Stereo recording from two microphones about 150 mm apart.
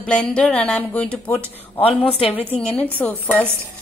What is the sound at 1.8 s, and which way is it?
Speech, 40° left (ahead or behind).